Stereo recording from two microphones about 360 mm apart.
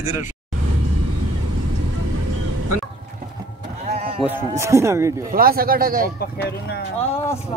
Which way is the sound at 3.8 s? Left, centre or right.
Centre.